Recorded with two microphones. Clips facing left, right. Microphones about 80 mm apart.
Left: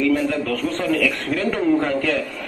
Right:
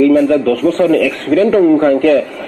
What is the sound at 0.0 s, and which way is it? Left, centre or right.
A man's voice, right.